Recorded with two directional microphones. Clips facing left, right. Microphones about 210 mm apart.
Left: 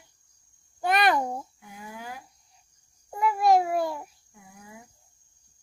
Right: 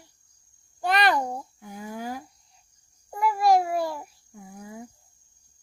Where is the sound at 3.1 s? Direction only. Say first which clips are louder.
Even; centre (ahead or behind).